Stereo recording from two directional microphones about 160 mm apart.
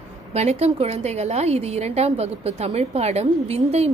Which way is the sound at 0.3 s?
40° right (ahead or behind).